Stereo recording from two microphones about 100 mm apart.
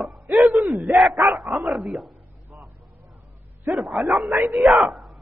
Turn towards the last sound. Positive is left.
turn(degrees=0)  # may be behind; listen again after turning